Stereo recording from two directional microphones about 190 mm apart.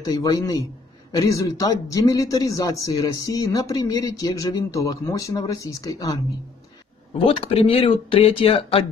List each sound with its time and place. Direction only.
0.0 s speech: 20° left (ahead or behind)
7.2 s speech: 30° left (ahead or behind)